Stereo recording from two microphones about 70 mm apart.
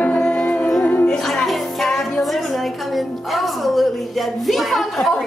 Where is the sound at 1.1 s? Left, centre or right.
Centre.